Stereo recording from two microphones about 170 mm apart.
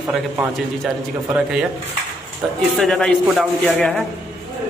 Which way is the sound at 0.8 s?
5° right (ahead or behind).